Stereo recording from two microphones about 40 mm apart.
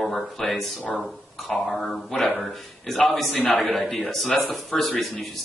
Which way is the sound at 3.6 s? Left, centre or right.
Centre.